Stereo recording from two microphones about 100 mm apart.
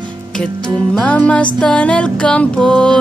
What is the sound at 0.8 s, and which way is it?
Music, 10° left (ahead or behind).